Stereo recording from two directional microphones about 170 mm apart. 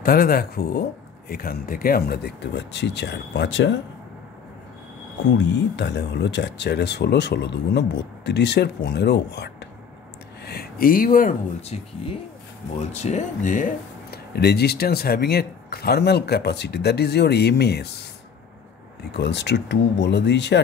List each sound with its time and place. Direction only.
0.0 s speech: 60° left (ahead or behind); by 3.8 s 90° left
5.3 s speech: 90° left
10.4 s speech: 70° left (ahead or behind)
11.7 s speech: 40° left (ahead or behind); by 18.0 s 75° left (ahead or behind)
19.1 s speech: 90° left